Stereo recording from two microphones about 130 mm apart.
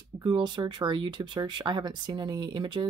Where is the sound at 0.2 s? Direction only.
35° right (ahead or behind).